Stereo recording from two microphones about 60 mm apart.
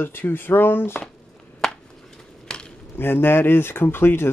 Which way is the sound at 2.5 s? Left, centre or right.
Centre.